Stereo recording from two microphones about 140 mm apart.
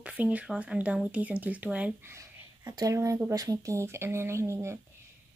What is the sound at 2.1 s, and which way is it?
Speech, 20° right (ahead or behind).